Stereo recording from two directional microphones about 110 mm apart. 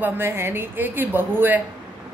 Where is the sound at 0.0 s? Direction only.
20° right (ahead or behind).